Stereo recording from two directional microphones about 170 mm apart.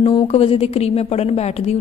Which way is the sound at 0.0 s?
30° left (ahead or behind).